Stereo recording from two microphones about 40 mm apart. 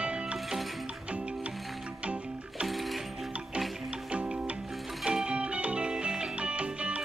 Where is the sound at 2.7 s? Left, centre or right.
Centre.